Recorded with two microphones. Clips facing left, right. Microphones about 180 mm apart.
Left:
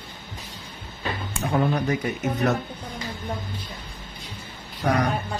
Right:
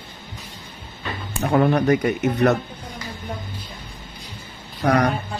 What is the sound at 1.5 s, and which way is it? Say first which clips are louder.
Speech: right 6 dB; 65° right (ahead or behind).